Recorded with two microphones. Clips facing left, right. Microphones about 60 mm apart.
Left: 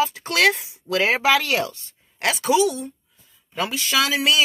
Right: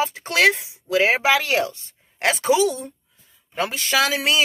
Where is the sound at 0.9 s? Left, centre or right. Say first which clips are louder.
Right 1 dB; centre.